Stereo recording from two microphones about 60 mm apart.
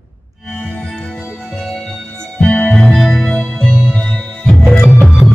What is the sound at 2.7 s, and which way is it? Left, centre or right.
Music, centre.